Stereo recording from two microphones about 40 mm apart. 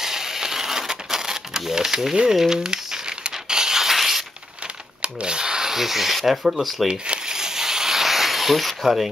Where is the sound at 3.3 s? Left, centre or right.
Centre.